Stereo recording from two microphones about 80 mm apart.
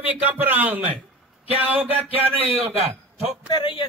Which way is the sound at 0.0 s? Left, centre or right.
Right.